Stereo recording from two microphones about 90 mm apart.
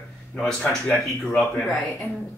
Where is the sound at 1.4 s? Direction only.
Centre (ahead or behind).